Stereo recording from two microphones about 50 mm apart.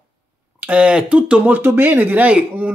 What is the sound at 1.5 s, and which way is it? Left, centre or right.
Speech, right.